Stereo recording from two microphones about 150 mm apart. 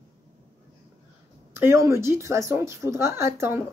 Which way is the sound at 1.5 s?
15° right (ahead or behind).